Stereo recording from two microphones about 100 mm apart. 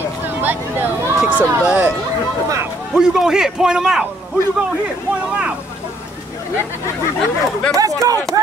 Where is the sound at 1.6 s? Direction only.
10° right (ahead or behind).